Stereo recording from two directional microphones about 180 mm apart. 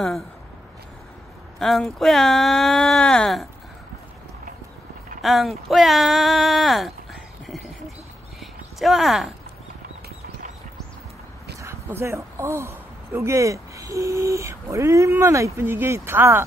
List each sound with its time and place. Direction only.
0.0 s speech: centre (ahead or behind)
1.6 s speech: centre (ahead or behind)
5.2 s speech: centre (ahead or behind)
8.4 s clip-clop: centre (ahead or behind)
11.6 s speech: 15° right (ahead or behind)